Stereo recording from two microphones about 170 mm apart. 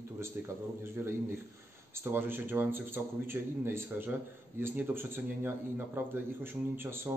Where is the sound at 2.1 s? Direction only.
10° right (ahead or behind).